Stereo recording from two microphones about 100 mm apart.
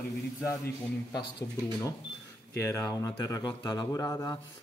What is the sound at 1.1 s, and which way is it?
Speech, 45° left (ahead or behind).